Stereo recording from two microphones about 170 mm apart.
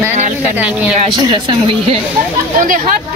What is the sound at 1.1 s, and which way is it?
Speech, 30° right (ahead or behind).